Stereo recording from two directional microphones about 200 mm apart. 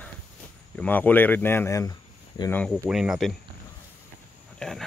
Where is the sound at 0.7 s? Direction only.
10° left (ahead or behind).